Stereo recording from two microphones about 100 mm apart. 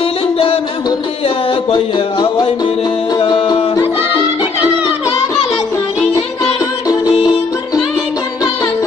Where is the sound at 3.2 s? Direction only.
70° left (ahead or behind).